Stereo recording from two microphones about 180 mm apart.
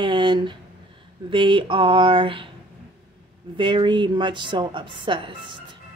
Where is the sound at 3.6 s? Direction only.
25° right (ahead or behind).